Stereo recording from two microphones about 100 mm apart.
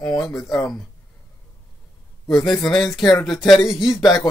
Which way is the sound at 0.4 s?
35° left (ahead or behind).